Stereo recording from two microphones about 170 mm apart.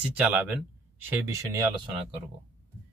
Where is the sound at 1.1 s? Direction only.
15° right (ahead or behind).